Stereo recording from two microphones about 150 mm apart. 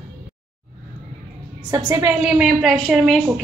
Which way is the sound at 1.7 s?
20° right (ahead or behind).